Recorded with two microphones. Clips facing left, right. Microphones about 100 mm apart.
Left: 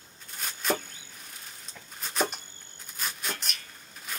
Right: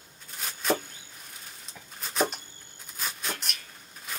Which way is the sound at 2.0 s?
Centre (ahead or behind).